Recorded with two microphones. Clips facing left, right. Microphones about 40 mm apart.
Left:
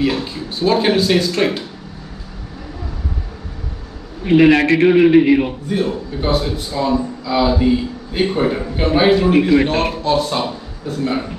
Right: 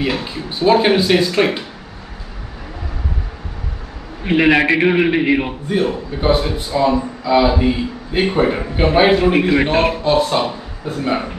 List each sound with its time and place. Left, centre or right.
0.1 s a man's voice: right
4.2 s a man's voice: centre